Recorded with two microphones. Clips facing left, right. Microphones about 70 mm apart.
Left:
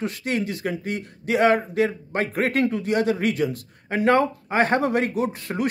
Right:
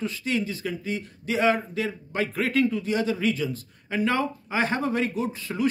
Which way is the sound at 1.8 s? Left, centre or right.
Left.